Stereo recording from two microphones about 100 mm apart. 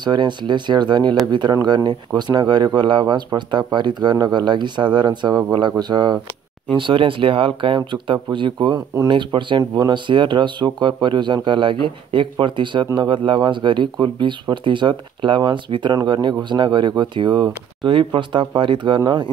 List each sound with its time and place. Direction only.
0.0 s speech: 50° right (ahead or behind)
6.7 s speech: 55° right (ahead or behind)